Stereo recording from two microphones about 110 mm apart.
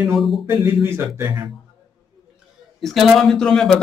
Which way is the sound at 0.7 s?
20° right (ahead or behind).